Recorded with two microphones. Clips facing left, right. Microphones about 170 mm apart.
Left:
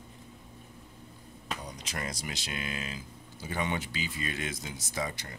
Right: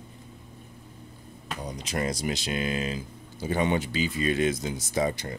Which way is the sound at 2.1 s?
25° right (ahead or behind).